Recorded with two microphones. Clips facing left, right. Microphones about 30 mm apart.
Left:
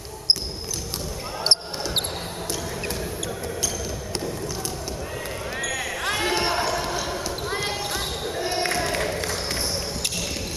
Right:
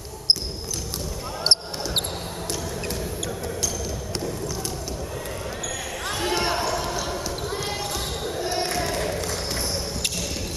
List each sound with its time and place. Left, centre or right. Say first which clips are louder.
1.4 s basketball bounce: even; centre
5.7 s basketball bounce: left 5 dB; left; by 7.2 s centre
7.4 s basketball bounce: left 4 dB; centre
8.9 s a sound: left 1 dB; centre